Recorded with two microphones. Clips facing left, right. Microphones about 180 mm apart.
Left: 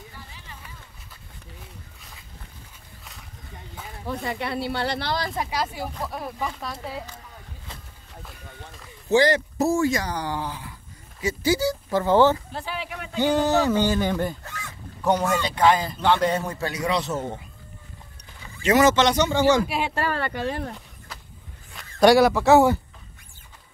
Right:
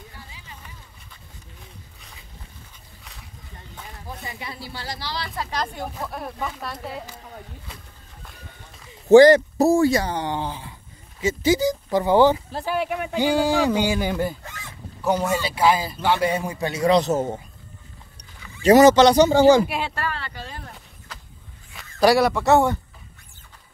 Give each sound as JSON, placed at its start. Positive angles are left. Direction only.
{"t": 4.0, "sound": "speech", "side_deg": 70}
{"t": 5.3, "sound": "speech", "side_deg": 15}
{"t": 9.1, "sound": "speech", "side_deg": -45}
{"t": 12.5, "sound": "speech", "side_deg": -45}
{"t": 13.1, "sound": "speech", "side_deg": -10}
{"t": 16.8, "sound": "speech", "side_deg": -35}
{"t": 18.6, "sound": "speech", "side_deg": -35}
{"t": 20.2, "sound": "speech", "side_deg": 55}
{"t": 21.7, "sound": "a man's voice", "side_deg": 0}